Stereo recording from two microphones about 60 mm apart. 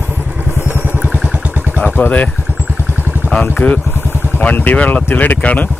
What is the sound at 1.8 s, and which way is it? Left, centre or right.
Speech, left.